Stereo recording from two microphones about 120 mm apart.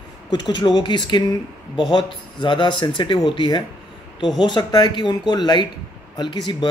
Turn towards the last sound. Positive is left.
turn(degrees=40)  # may be behind; listen again after turning